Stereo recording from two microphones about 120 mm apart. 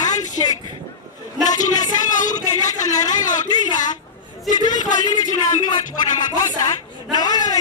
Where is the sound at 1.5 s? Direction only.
90° left.